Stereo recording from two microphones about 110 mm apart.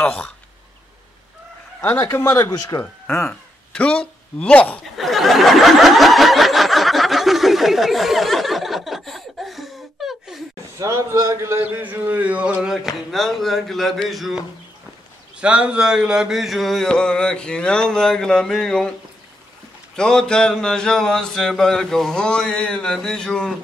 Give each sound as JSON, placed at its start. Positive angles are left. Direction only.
{"t": 0.0, "sound": "a man's voice", "side_deg": 10}
{"t": 2.0, "sound": "a man's voice", "side_deg": 30}
{"t": 4.9, "sound": "a sound", "side_deg": 0}
{"t": 10.8, "sound": "a man's voice", "side_deg": -25}
{"t": 15.4, "sound": "speech", "side_deg": -10}
{"t": 20.0, "sound": "speech", "side_deg": 5}